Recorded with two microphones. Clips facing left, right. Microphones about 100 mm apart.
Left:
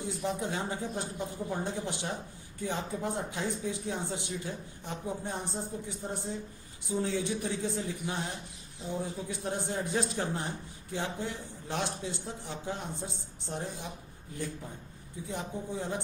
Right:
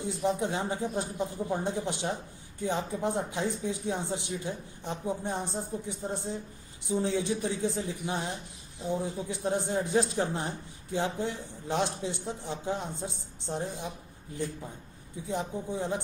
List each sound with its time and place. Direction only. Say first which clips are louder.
0.0 s speech: right 4 dB; 20° right (ahead or behind)
15.2 s speech: right 4 dB; 25° right (ahead or behind)